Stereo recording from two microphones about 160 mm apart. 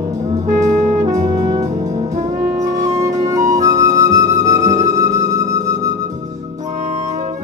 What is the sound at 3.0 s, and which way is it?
Flute, 20° right (ahead or behind).